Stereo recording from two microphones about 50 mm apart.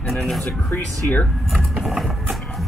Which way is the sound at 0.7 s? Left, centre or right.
Left.